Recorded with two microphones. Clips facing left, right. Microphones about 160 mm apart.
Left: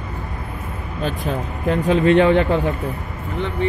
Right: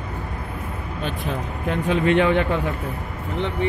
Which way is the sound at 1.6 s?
35° left (ahead or behind).